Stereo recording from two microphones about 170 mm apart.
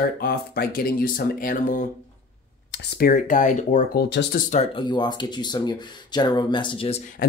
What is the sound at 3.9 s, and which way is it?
Speech, 65° left (ahead or behind).